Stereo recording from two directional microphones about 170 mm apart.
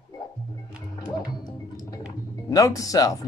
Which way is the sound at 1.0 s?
25° left (ahead or behind).